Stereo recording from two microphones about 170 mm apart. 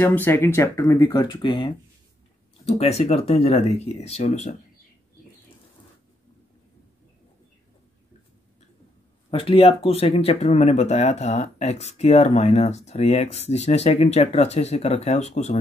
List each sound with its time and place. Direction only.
0.0 s speech: 10° left (ahead or behind); by 4.6 s 45° left (ahead or behind)
9.3 s speech: 35° left (ahead or behind)